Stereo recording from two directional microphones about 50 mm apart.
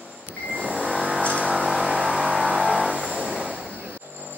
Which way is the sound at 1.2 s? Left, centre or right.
Left.